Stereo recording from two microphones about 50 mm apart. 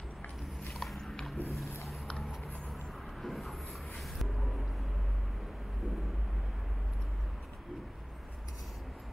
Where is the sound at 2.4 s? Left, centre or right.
Centre.